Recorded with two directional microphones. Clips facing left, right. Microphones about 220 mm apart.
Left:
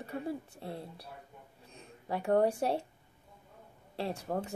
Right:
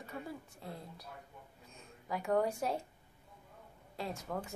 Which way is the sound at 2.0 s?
30° left (ahead or behind).